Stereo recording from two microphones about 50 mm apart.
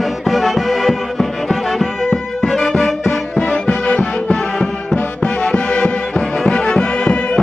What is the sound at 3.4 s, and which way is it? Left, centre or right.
Music, centre.